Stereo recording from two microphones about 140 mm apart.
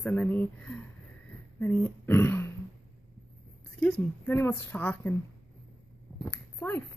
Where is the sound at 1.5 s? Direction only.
10° left (ahead or behind).